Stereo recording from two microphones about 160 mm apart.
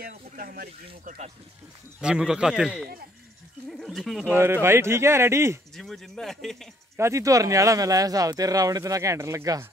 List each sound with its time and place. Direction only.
0.0 s speech: 65° right (ahead or behind)
2.0 s speech: 5° right (ahead or behind)
4.3 s speech: 15° right (ahead or behind)
5.8 s speech: centre (ahead or behind)
7.0 s speech: 20° right (ahead or behind)